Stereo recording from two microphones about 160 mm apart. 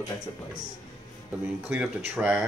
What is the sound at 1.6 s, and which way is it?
Speech, 10° right (ahead or behind).